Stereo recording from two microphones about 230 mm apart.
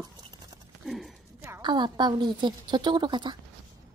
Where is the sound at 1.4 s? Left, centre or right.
Centre.